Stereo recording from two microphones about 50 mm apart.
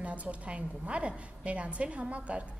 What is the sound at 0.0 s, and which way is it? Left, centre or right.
A woman's voice, right.